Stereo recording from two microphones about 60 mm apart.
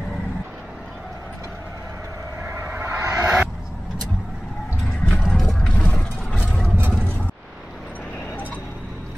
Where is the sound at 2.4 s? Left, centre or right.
Right.